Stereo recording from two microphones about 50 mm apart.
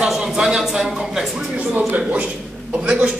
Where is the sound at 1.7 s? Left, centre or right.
Right.